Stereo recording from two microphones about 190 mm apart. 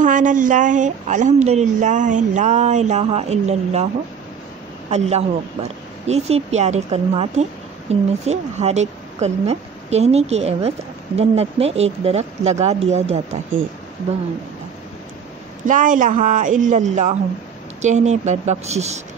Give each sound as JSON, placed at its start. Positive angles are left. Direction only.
{"t": 0.0, "sound": "speech", "side_deg": -40}
{"t": 4.9, "sound": "speech", "side_deg": -35}
{"t": 15.6, "sound": "a man's voice", "side_deg": -45}